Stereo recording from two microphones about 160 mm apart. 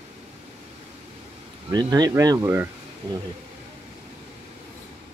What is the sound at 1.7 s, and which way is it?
Speech, 25° right (ahead or behind).